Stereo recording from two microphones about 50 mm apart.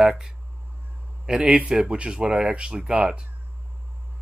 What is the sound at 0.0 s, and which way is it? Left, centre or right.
Speech, centre.